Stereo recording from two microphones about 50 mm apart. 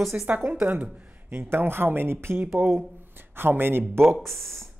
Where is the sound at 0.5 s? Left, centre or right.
Right.